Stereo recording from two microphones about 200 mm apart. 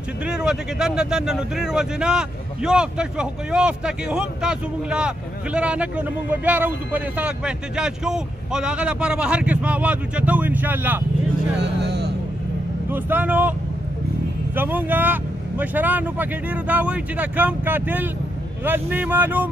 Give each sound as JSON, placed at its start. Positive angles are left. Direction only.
{"t": 0.2, "sound": "speech", "side_deg": -5}
{"t": 11.6, "sound": "speech", "side_deg": -55}
{"t": 12.9, "sound": "speech", "side_deg": -10}